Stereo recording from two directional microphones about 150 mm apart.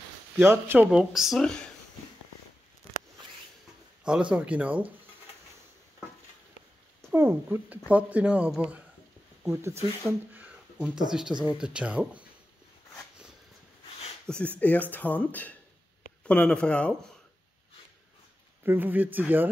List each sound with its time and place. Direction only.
0.5 s speech: 15° right (ahead or behind)
0.9 s speech: 5° right (ahead or behind)
4.0 s speech: 5° right (ahead or behind)
7.1 s speech: 15° right (ahead or behind)
14.2 s speech: 5° left (ahead or behind)
18.6 s speech: 15° right (ahead or behind)